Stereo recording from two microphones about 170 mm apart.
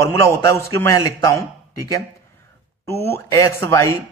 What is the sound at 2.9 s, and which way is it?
A man's voice, 15° left (ahead or behind).